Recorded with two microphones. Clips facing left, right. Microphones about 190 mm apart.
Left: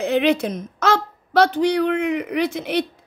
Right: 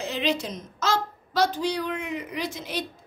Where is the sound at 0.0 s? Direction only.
60° left (ahead or behind).